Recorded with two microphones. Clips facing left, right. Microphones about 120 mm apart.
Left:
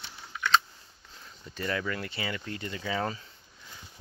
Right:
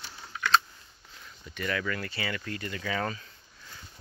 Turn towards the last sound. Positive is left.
turn(degrees=20)  # may be behind; listen again after turning